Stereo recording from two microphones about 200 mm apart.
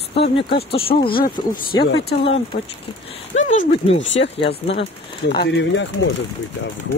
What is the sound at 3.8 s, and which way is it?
Speech, 65° left (ahead or behind).